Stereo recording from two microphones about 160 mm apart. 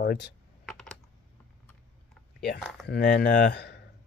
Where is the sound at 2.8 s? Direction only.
90° left.